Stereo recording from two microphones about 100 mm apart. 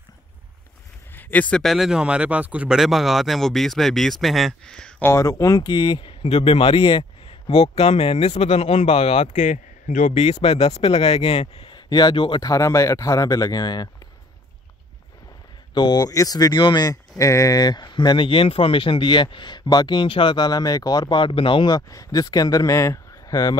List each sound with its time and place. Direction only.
1.1 s a sound: 15° left (ahead or behind)
1.6 s speech: centre (ahead or behind)
2.8 s speech: centre (ahead or behind)
5.0 s speech: 30° left (ahead or behind); by 6.1 s 50° left (ahead or behind)
6.2 s speech: 85° left
11.7 s speech: 45° left (ahead or behind)
15.7 s speech: 45° left (ahead or behind)
17.2 s speech: 35° left (ahead or behind)
21.2 s speech: 60° left (ahead or behind); by 23.6 s 40° left (ahead or behind)